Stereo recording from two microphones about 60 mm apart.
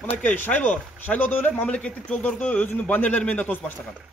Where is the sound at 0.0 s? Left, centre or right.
Left.